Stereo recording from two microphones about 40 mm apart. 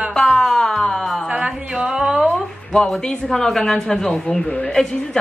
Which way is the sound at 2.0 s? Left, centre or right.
Centre.